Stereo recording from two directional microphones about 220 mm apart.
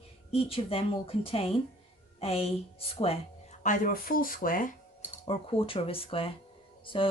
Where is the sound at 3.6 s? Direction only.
35° left (ahead or behind).